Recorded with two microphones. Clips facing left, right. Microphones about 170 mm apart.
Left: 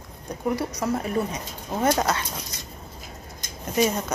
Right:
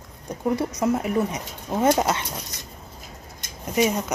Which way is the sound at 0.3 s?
20° right (ahead or behind).